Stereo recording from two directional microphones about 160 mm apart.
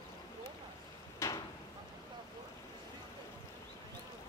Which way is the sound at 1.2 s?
20° left (ahead or behind).